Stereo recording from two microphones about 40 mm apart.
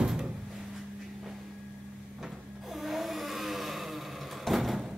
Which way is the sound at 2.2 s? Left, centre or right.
Centre.